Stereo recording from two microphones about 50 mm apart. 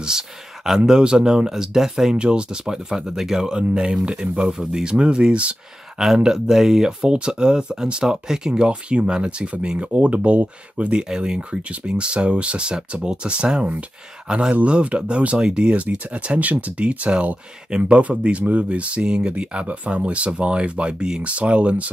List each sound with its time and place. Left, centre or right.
0.7 s speech: centre
5.9 s speech: centre